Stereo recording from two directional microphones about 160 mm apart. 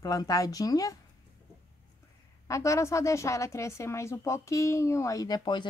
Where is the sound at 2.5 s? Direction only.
20° left (ahead or behind).